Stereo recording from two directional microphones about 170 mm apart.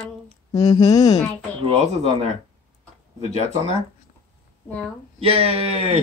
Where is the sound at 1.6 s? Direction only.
40° right (ahead or behind).